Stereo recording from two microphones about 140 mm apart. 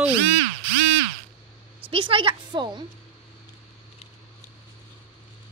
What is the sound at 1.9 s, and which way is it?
Speech, 40° right (ahead or behind).